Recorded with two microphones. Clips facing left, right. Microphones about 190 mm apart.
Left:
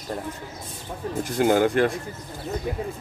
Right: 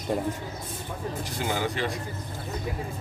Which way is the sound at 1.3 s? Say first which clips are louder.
Left 12 dB; 50° left (ahead or behind).